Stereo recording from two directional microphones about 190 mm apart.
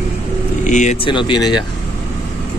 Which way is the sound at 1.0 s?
25° left (ahead or behind).